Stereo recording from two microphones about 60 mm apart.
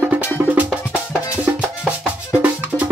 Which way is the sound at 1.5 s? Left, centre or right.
Right.